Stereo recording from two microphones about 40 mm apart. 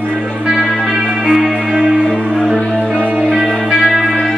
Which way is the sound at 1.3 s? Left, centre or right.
Centre.